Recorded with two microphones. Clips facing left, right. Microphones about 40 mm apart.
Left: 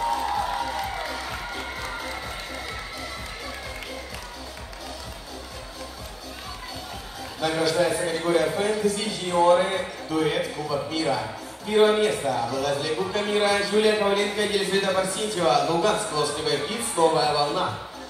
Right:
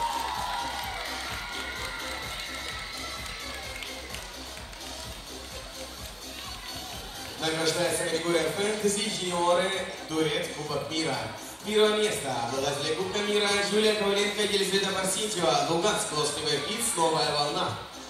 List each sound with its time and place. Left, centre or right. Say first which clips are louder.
0.0 s crowd: left 4 dB; centre
0.5 s music: left 5 dB; centre
7.3 s a man's voice: left 5 dB; centre